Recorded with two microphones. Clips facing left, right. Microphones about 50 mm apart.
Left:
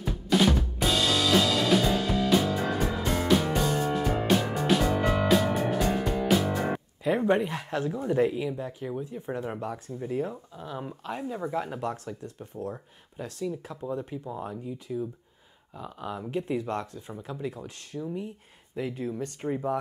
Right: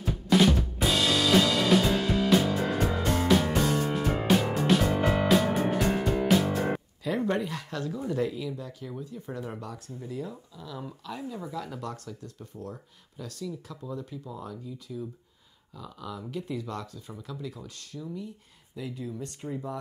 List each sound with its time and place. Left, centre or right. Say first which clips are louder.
0.3 s drum: right 2 dB; centre
0.8 s music: even; centre
7.0 s speech: left 6 dB; left